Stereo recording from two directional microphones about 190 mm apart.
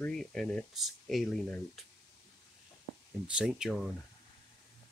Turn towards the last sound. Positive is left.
turn(degrees=0)  # may be behind; listen again after turning